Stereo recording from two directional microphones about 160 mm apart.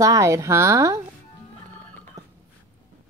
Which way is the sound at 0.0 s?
20° right (ahead or behind).